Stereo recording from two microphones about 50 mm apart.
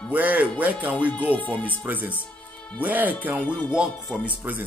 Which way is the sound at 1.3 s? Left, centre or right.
Left.